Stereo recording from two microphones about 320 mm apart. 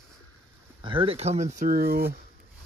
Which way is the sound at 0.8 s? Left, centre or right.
Centre.